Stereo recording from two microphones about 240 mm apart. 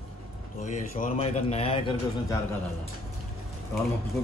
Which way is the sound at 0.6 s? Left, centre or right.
Left.